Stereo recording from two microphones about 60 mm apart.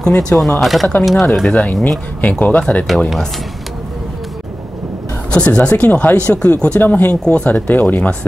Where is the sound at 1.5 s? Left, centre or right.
Centre.